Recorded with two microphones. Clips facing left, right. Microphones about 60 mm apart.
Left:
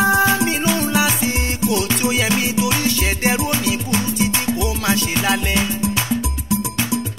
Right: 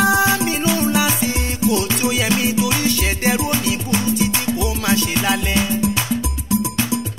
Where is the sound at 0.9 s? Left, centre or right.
Left.